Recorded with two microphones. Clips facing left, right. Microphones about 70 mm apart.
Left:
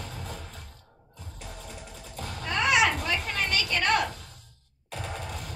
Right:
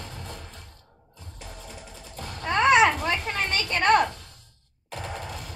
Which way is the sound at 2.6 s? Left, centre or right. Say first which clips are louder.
Right 5 dB; right.